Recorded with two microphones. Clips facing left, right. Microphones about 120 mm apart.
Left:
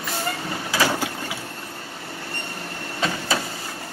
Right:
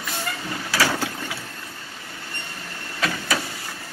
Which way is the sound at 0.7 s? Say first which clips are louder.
Left 1 dB; 15° left (ahead or behind).